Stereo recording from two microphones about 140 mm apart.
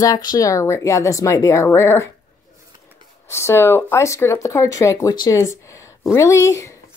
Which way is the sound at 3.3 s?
20° left (ahead or behind).